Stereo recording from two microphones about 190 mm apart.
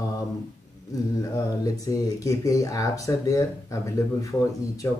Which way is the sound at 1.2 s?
20° left (ahead or behind).